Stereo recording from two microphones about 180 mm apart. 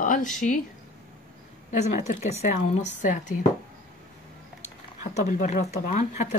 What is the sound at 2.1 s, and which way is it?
Speech, 40° left (ahead or behind).